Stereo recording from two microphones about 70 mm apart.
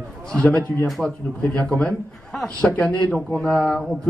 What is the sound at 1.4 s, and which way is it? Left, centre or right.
A man's voice, centre.